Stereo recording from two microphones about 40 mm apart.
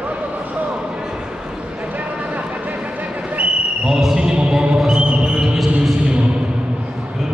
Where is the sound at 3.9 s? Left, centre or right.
Centre.